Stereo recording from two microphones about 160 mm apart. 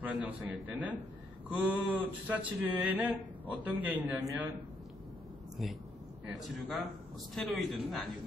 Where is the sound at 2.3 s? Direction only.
10° right (ahead or behind).